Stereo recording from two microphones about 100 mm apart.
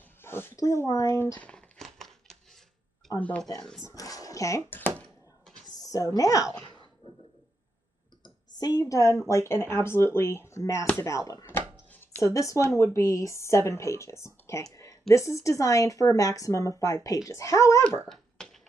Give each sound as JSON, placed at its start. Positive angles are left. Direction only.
{"t": 0.2, "sound": "speech", "side_deg": 25}
{"t": 1.4, "sound": "a sound", "side_deg": 10}
{"t": 3.2, "sound": "speech", "side_deg": 15}
{"t": 3.8, "sound": "a woman's voice", "side_deg": 35}
{"t": 4.6, "sound": "speech", "side_deg": 20}
{"t": 5.7, "sound": "a woman's voice", "side_deg": 40}
{"t": 8.2, "sound": "a sound", "side_deg": 40}
{"t": 9.3, "sound": "a woman's voice", "side_deg": 25}
{"t": 11.9, "sound": "a sound", "side_deg": 15}
{"t": 12.4, "sound": "a woman's voice", "side_deg": 30}
{"t": 18.0, "sound": "dog", "side_deg": 5}